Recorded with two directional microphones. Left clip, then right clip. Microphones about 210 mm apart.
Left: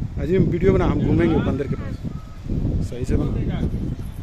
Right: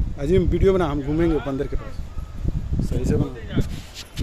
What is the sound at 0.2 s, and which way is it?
Speech, centre (ahead or behind).